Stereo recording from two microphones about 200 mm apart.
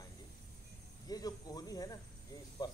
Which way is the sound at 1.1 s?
20° left (ahead or behind).